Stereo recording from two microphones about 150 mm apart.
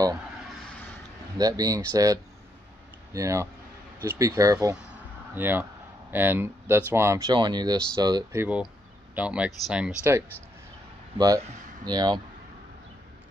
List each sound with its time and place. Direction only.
1.4 s speech: 25° right (ahead or behind)
8.4 s speech: 10° right (ahead or behind)
11.1 s speech: 25° right (ahead or behind)